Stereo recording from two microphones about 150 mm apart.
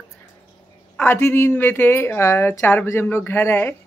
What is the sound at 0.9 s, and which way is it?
Speech, 15° left (ahead or behind).